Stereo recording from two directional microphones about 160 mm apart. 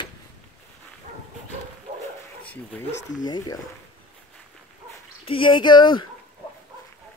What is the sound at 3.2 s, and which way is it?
Speech, 25° left (ahead or behind).